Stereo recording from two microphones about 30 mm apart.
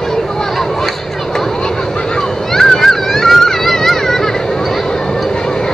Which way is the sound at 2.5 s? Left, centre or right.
Centre.